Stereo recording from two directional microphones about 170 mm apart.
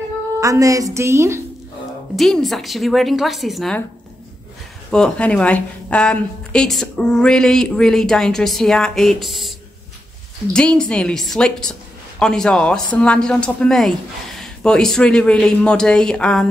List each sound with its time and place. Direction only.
0.4 s a woman's voice: 20° right (ahead or behind)
2.1 s a woman's voice: centre (ahead or behind)
4.9 s a woman's voice: 5° left (ahead or behind)
10.5 s a woman's voice: 5° left (ahead or behind)